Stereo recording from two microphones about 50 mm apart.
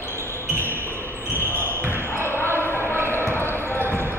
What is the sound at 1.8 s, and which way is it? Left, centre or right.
Basketball bounce, right.